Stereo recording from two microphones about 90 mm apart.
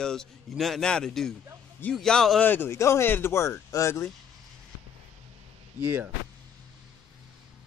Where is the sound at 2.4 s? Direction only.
25° left (ahead or behind).